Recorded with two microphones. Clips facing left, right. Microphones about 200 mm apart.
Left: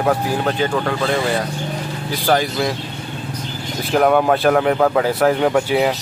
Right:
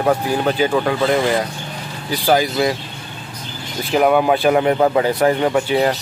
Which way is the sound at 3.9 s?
5° right (ahead or behind).